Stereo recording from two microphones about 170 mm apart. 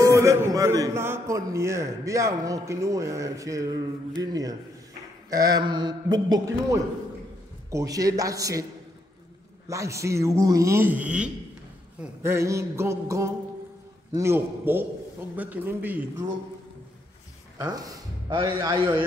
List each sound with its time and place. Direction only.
0.0 s a man's voice: 15° right (ahead or behind)
9.7 s a man's voice: 15° right (ahead or behind)
17.6 s speech: 20° right (ahead or behind)